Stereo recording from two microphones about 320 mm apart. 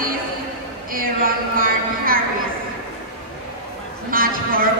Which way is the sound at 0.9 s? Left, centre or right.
Right.